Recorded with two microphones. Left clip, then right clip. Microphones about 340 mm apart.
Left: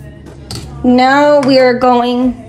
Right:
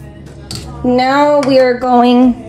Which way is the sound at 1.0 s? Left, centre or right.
Left.